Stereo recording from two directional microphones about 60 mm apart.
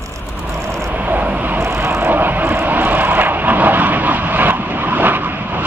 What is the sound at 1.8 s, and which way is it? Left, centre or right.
Vehicle, right.